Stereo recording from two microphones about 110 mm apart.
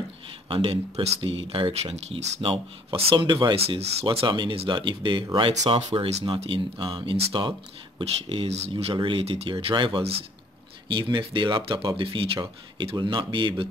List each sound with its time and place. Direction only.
0.5 s speech: 55° right (ahead or behind); by 2.4 s 80° right
2.4 s speech: 55° right (ahead or behind)
3.5 s speech: 65° right (ahead or behind)
8.9 s speech: 50° right (ahead or behind)
9.2 s speech: 60° right (ahead or behind)